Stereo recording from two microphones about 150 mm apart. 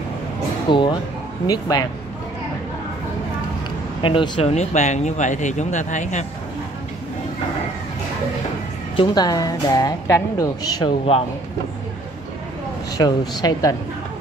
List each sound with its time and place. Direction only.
0.7 s a woman's voice: 30° left (ahead or behind)
4.0 s speech: 35° left (ahead or behind); by 6.2 s 55° left (ahead or behind)
8.9 s a woman's voice: 30° left (ahead or behind)
12.9 s a woman's voice: 25° left (ahead or behind)